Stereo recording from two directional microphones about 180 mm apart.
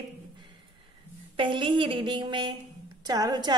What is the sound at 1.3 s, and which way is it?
A woman's voice, 30° right (ahead or behind).